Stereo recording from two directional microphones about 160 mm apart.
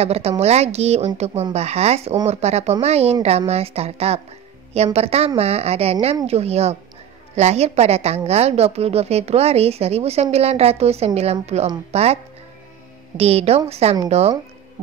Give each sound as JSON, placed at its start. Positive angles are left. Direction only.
{"t": 0.0, "sound": "a woman's voice", "side_deg": -40}
{"t": 13.2, "sound": "a woman's voice", "side_deg": -40}